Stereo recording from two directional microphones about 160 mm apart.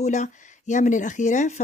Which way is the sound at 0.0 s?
50° left (ahead or behind).